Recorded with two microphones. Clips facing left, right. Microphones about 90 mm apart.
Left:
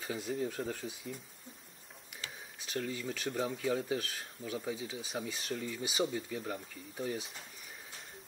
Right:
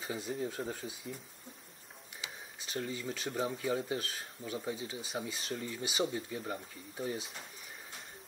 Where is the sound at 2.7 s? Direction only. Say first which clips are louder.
Left 1 dB; 10° right (ahead or behind).